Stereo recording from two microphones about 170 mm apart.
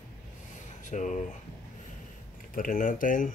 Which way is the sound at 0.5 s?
45° left (ahead or behind).